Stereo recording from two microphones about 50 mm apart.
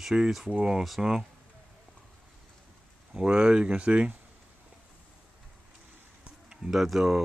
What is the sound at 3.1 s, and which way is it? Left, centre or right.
Speech, centre.